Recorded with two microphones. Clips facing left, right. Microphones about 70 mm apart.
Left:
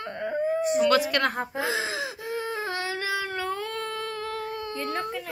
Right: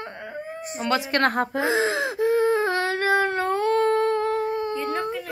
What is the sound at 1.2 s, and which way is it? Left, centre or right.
Whimper, right.